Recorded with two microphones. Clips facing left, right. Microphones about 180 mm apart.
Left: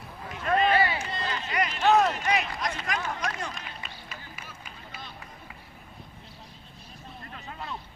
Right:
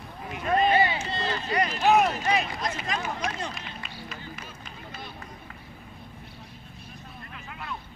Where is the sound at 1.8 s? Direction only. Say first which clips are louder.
Even; 10° right (ahead or behind).